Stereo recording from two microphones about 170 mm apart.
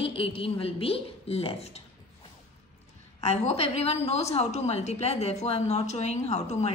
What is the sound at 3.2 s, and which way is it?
A woman's voice, 40° left (ahead or behind).